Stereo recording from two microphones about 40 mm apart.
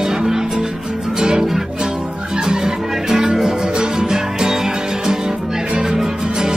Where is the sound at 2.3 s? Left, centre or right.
Centre.